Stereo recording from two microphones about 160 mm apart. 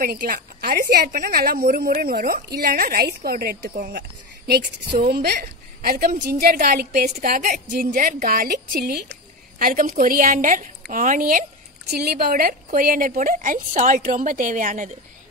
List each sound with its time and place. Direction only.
0.0 s a woman's voice: 60° right (ahead or behind)
5.0 s a woman's voice: 75° right (ahead or behind)
7.2 s a woman's voice: 55° right (ahead or behind)
11.9 s a woman's voice: 80° right; by 14.9 s 55° right (ahead or behind)